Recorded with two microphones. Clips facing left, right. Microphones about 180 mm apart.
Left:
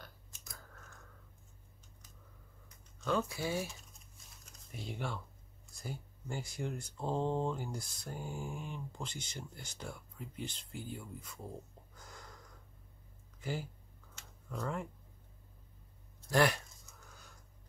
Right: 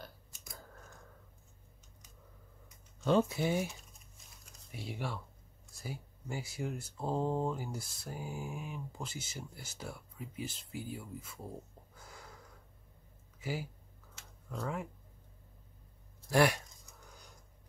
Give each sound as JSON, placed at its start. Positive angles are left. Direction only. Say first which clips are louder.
{"t": 3.0, "sound": "speech", "louder": "right 6 dB", "side_deg": -25}
{"t": 4.7, "sound": "speech", "louder": "right 1 dB", "side_deg": -5}
{"t": 13.4, "sound": "speech", "louder": "right 1 dB", "side_deg": -5}
{"t": 16.3, "sound": "speech", "louder": "right 2 dB", "side_deg": -10}